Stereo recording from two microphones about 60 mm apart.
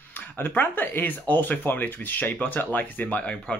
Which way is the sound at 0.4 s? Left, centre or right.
Left.